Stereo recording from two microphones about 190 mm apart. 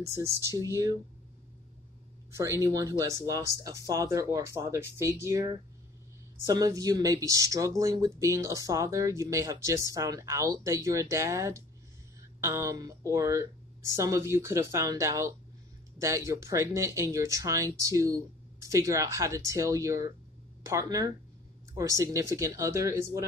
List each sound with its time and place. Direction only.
0.0 s speech: 15° right (ahead or behind)
2.3 s speech: 15° right (ahead or behind)